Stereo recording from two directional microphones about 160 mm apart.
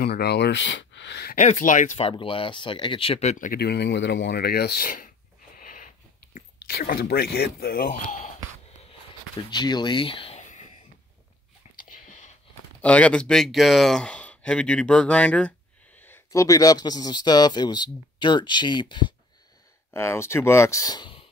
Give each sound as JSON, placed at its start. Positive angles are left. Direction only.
{"t": 0.0, "sound": "speech", "side_deg": 85}
{"t": 1.3, "sound": "speech", "side_deg": 50}
{"t": 2.0, "sound": "speech", "side_deg": 35}
{"t": 3.6, "sound": "speech", "side_deg": 90}
{"t": 5.6, "sound": "a sound", "side_deg": 60}
{"t": 6.7, "sound": "speech", "side_deg": 70}
{"t": 9.5, "sound": "speech", "side_deg": 25}
{"t": 11.6, "sound": "a sound", "side_deg": 45}
{"t": 12.8, "sound": "speech", "side_deg": 10}
{"t": 19.9, "sound": "speech", "side_deg": 15}